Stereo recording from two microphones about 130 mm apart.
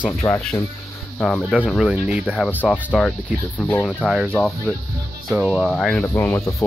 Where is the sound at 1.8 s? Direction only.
5° right (ahead or behind).